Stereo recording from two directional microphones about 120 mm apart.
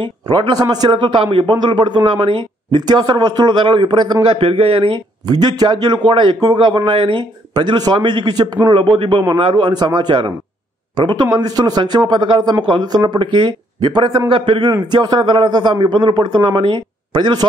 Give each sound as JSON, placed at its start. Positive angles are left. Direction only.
{"t": 0.0, "sound": "a man's voice", "side_deg": -40}